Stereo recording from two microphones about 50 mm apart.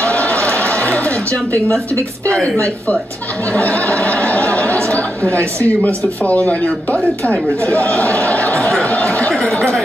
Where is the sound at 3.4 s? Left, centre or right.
Left.